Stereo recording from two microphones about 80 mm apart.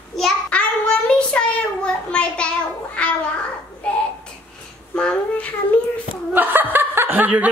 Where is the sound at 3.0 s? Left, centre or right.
Centre.